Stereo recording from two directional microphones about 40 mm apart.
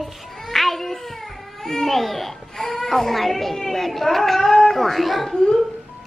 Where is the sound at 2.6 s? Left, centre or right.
Centre.